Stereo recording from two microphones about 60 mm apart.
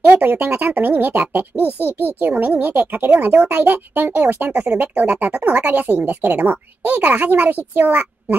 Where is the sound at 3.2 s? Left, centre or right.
Right.